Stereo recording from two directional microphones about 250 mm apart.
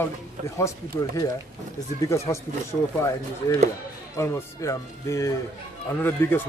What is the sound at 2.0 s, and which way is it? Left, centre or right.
A man's voice, centre.